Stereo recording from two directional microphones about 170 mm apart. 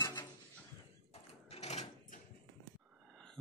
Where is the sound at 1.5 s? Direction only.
40° left (ahead or behind).